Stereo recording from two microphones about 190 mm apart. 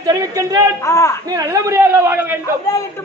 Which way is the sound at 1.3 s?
20° right (ahead or behind).